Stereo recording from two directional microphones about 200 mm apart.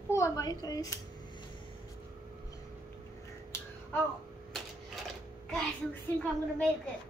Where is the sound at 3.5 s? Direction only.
15° left (ahead or behind).